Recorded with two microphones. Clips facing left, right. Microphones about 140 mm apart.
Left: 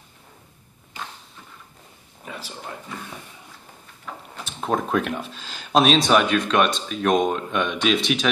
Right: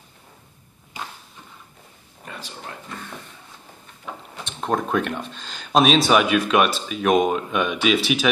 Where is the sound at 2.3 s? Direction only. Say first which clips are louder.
Left 1 dB; 5° left (ahead or behind).